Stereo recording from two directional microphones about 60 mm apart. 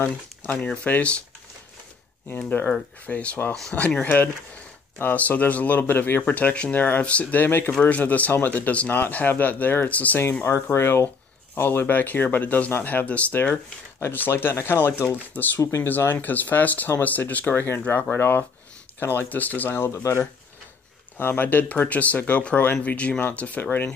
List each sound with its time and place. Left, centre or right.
0.8 s speech: left
2.2 s speech: left
3.1 s speech: left
10.5 s speech: left
14.3 s speech: left
19.7 s speech: left
21.2 s speech: left